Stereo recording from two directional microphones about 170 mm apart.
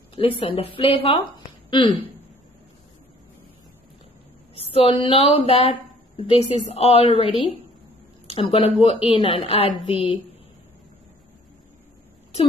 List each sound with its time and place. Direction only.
0.1 s a woman's voice: 30° left (ahead or behind)
4.6 s a woman's voice: 35° left (ahead or behind)